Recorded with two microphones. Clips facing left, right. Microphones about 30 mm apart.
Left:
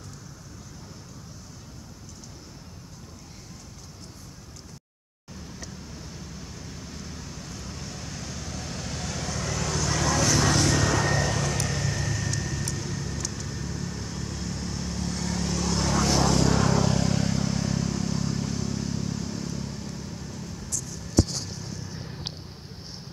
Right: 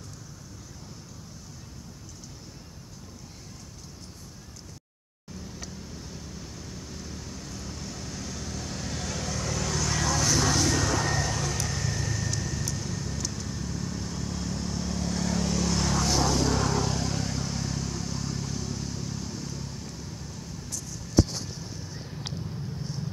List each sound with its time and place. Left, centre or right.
6.0 s vehicle: centre
10.0 s vehicle: centre
10.5 s vehicle: left; by 16.3 s centre
16.3 s vehicle: left
16.6 s vehicle: left
17.3 s vehicle: left